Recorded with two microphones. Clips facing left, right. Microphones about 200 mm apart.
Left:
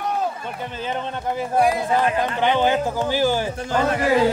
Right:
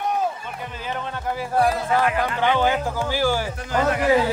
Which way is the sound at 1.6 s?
15° left (ahead or behind).